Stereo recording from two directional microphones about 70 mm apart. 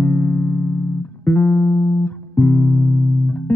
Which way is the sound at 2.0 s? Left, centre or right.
Left.